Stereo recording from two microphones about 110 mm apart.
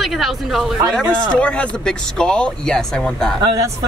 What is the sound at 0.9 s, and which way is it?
Speech, 10° left (ahead or behind).